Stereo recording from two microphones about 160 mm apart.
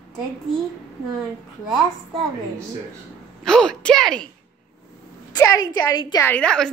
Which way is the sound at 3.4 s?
5° left (ahead or behind).